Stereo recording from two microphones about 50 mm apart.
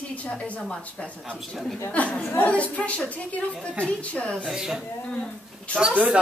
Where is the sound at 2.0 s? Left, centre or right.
Left.